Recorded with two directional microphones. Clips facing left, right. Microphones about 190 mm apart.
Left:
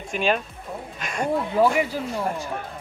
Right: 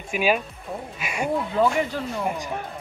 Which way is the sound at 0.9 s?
10° right (ahead or behind).